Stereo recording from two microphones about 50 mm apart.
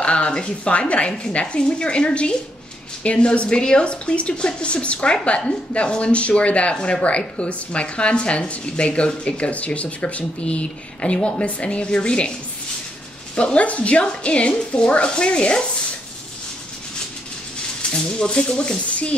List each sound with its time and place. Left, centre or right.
0.0 s speech: left
13.4 s speech: left
17.9 s speech: centre